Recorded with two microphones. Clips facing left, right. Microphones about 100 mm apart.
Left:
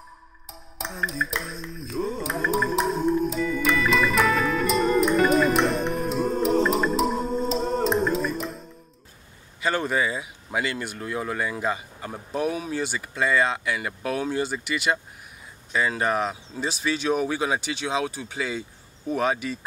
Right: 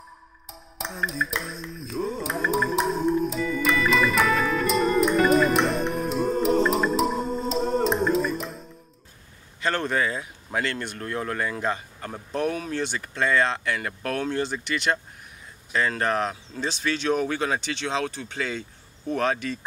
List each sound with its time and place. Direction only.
0.5 s music: centre (ahead or behind)
9.6 s speech: 5° left (ahead or behind)